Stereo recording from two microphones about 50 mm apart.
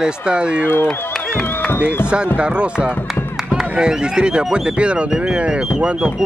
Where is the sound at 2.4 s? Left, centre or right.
Right.